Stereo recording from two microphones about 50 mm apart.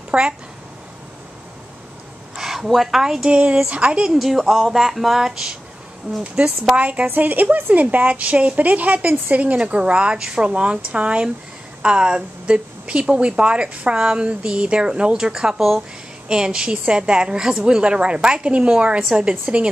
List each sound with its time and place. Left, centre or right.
0.1 s a woman's voice: right
2.3 s speech: centre
3.3 s a woman's voice: right
4.1 s a sound: centre
6.2 s a woman's voice: right